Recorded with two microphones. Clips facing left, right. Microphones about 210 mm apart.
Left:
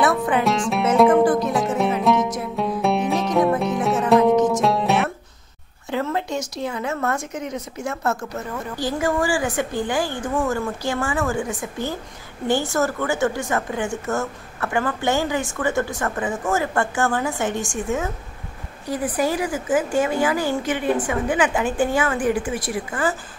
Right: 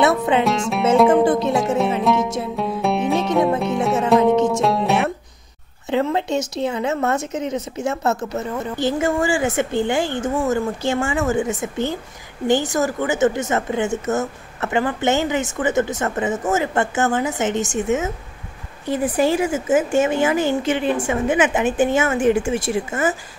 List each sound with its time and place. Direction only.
0.4 s music: centre (ahead or behind)
1.2 s music: 25° right (ahead or behind)
2.0 s music: centre (ahead or behind)
5.9 s a woman's voice: 25° right (ahead or behind)